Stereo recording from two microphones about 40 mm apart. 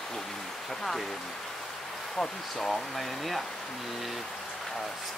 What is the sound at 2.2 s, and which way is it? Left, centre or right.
Speech, centre.